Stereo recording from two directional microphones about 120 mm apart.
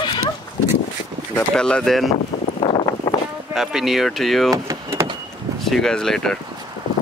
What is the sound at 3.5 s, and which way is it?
Speech, centre (ahead or behind).